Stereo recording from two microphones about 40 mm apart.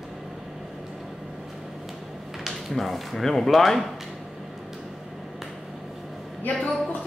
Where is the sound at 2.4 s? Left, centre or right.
Centre.